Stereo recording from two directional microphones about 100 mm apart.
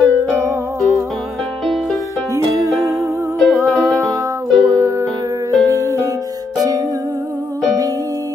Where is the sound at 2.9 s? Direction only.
Centre (ahead or behind).